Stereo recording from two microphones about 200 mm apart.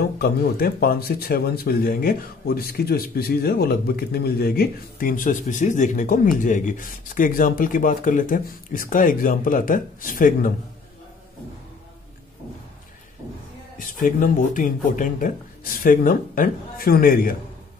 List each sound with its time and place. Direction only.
0.2 s speech: 50° left (ahead or behind)
13.7 s speech: 40° left (ahead or behind)